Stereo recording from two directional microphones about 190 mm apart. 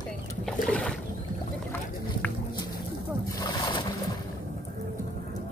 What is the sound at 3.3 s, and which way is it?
Boat, 20° left (ahead or behind).